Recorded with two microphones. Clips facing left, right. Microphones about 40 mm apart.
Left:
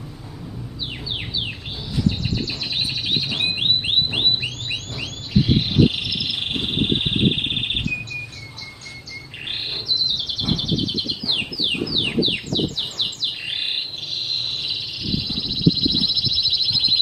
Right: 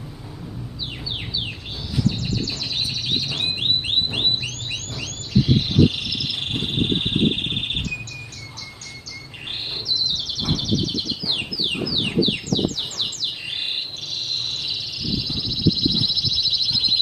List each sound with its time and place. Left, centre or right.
2.0 s bird: centre
9.8 s bird: centre
15.0 s a sound: centre